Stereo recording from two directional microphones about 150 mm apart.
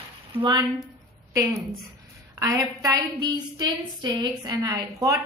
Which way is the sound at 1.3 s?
20° right (ahead or behind).